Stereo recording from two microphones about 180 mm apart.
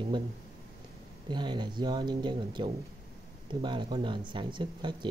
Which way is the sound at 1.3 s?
25° right (ahead or behind).